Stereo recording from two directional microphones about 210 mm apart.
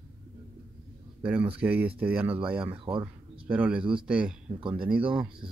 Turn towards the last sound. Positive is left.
turn(degrees=-5)  # may be behind; listen again after turning